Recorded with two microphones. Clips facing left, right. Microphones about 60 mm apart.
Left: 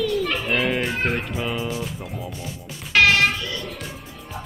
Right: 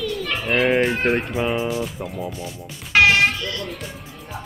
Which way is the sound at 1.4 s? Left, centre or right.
Right.